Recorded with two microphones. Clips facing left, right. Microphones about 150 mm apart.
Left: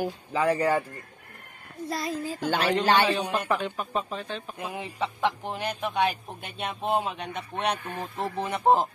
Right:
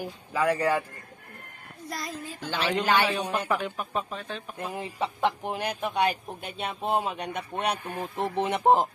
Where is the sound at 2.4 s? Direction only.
45° left (ahead or behind).